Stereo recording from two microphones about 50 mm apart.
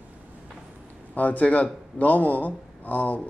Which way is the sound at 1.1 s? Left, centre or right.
Left.